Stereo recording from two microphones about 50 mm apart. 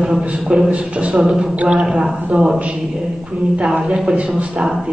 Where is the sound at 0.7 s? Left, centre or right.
Right.